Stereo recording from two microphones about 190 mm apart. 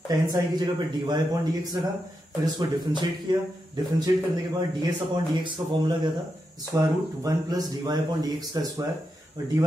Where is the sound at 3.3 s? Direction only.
25° right (ahead or behind).